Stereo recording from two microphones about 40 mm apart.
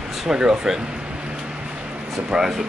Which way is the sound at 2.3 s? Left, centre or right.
Centre.